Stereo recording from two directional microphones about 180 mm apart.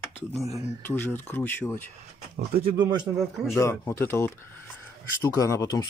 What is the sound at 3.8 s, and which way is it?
Speech, 15° left (ahead or behind).